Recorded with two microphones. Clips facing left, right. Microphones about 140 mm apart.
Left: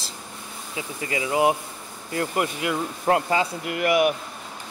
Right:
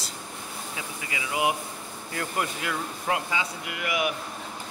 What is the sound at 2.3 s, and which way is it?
Speech, 20° left (ahead or behind).